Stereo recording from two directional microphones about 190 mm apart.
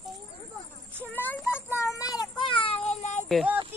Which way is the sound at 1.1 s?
10° left (ahead or behind).